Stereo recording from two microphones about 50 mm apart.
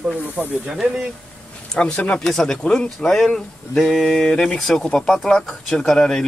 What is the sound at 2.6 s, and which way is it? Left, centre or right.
Speech, centre.